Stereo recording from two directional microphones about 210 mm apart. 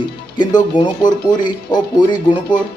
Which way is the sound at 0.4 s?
20° left (ahead or behind).